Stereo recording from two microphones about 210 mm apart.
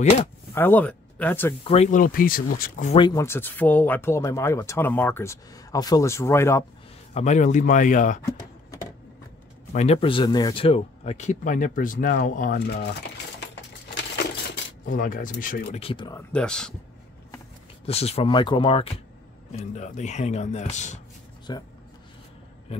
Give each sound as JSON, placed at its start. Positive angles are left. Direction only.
{"t": 0.6, "sound": "speech", "side_deg": 10}
{"t": 1.6, "sound": "speech", "side_deg": 30}
{"t": 2.9, "sound": "speech", "side_deg": 20}
{"t": 7.2, "sound": "speech", "side_deg": 35}
{"t": 9.7, "sound": "speech", "side_deg": 30}
{"t": 12.5, "sound": "speech", "side_deg": 50}
{"t": 14.9, "sound": "speech", "side_deg": 40}
{"t": 15.8, "sound": "speech", "side_deg": 25}
{"t": 16.2, "sound": "speech", "side_deg": 5}
{"t": 17.8, "sound": "speech", "side_deg": 30}
{"t": 21.5, "sound": "speech", "side_deg": 20}